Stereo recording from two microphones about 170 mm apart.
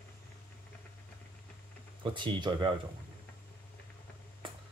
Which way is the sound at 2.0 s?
30° right (ahead or behind).